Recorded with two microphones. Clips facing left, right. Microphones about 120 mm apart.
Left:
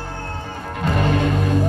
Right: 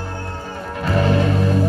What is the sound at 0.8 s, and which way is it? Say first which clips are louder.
Music: right 2 dB; 20° left (ahead or behind).